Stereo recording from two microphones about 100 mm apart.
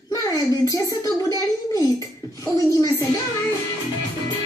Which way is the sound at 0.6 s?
35° left (ahead or behind).